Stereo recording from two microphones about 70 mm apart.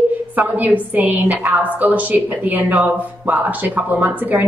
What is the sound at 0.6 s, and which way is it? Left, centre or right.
A woman's voice, right.